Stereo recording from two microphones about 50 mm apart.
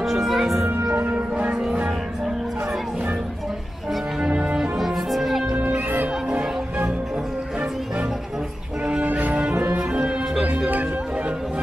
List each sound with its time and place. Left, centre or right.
0.0 s music: centre
0.9 s music: right
4.2 s music: centre
4.6 s music: centre
5.5 s music: centre
9.0 s music: right
9.8 s music: centre
10.7 s music: right